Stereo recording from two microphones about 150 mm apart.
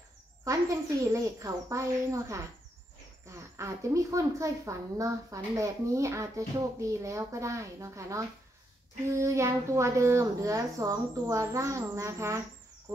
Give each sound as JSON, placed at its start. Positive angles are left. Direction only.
{"t": 0.4, "sound": "a woman's voice", "side_deg": -20}